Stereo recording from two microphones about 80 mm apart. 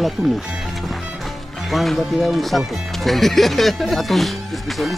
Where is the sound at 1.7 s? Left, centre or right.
Centre.